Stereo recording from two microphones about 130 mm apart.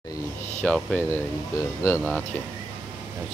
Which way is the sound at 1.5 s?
25° left (ahead or behind).